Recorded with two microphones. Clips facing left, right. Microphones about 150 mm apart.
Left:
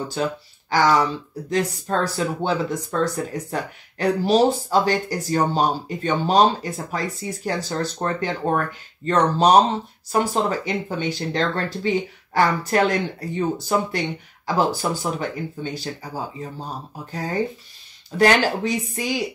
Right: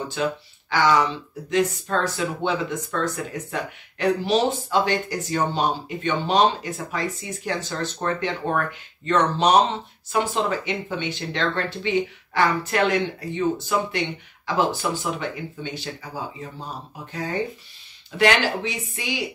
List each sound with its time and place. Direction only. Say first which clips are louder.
0.1 s speech: left 1 dB; 40° left (ahead or behind)